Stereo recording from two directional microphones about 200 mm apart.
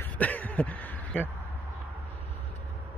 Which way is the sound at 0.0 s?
10° left (ahead or behind).